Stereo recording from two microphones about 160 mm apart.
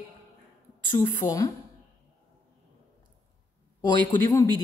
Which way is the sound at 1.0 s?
20° left (ahead or behind).